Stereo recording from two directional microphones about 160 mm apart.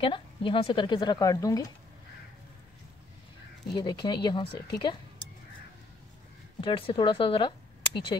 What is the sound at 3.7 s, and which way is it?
Speech, 25° left (ahead or behind).